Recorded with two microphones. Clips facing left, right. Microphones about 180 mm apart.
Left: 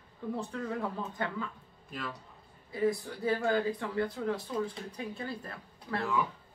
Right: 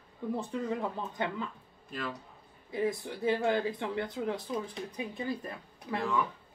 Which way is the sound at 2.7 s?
20° right (ahead or behind).